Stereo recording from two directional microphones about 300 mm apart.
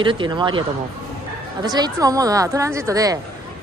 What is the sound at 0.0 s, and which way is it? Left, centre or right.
Speech, centre.